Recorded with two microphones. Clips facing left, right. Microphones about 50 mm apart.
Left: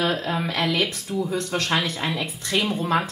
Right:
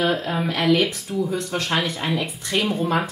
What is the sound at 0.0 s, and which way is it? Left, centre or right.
Speech, centre.